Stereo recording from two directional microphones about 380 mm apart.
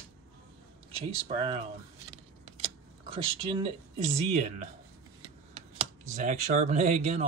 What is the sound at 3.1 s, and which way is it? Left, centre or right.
Speech, centre.